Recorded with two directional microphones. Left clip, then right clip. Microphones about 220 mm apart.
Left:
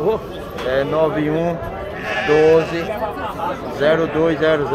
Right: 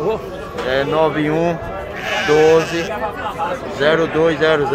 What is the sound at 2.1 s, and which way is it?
Speech, 45° right (ahead or behind).